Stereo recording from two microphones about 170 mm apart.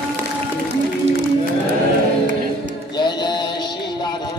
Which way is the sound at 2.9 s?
25° left (ahead or behind).